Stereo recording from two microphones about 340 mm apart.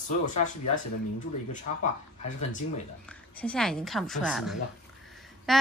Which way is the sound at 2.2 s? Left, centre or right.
Left.